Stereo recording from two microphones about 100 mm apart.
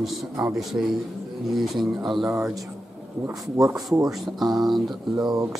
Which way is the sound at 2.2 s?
30° right (ahead or behind).